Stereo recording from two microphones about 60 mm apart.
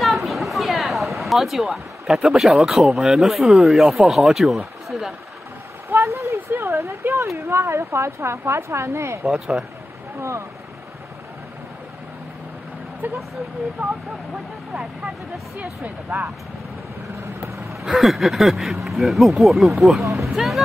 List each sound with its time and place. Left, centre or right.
0.0 s a sound: centre
2.0 s speech: centre
5.9 s a sound: right
7.3 s a woman's voice: right
9.2 s speech: centre
13.0 s speech: right
13.7 s speech: centre
17.4 s vehicle: right
17.8 s speech: centre